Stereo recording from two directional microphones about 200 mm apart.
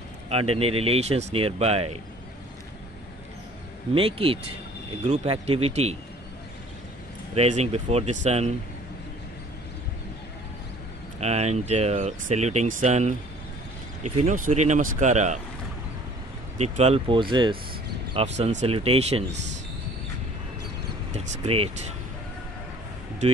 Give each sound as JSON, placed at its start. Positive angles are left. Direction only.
{"t": 0.3, "sound": "speech", "side_deg": -30}
{"t": 3.9, "sound": "speech", "side_deg": -30}
{"t": 7.3, "sound": "speech", "side_deg": -35}
{"t": 11.1, "sound": "speech", "side_deg": -35}
{"t": 16.5, "sound": "speech", "side_deg": -35}
{"t": 21.1, "sound": "speech", "side_deg": -30}